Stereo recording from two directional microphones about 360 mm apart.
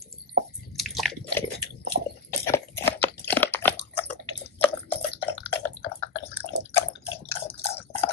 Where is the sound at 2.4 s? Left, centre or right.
Centre.